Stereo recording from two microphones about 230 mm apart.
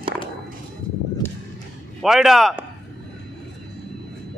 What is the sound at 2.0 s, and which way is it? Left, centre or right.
Speech, centre.